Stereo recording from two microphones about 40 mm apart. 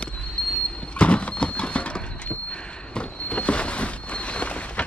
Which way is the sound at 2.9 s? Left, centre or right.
Left.